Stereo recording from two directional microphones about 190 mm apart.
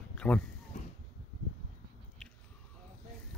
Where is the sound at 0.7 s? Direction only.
40° left (ahead or behind).